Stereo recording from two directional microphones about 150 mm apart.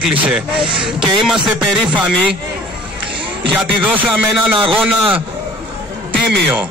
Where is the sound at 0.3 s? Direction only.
5° right (ahead or behind).